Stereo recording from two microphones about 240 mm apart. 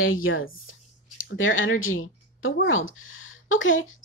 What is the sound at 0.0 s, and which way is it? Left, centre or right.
Speech, left.